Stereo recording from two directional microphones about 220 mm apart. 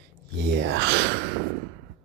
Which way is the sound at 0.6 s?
55° right (ahead or behind).